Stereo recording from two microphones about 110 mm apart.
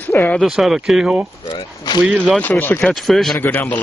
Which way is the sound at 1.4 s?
40° left (ahead or behind).